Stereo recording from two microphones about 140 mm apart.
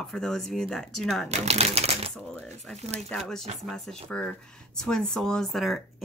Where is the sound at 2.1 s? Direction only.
5° left (ahead or behind).